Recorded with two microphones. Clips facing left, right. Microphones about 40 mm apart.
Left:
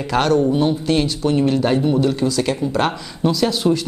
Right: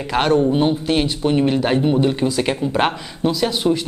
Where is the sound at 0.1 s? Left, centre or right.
Right.